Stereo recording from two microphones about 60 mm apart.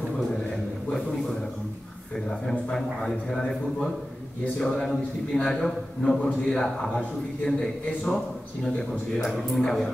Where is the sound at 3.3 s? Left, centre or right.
Centre.